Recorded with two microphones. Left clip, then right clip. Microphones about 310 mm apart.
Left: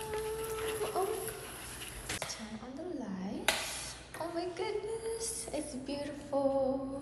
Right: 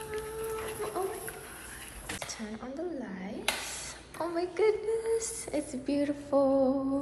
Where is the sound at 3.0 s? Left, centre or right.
Centre.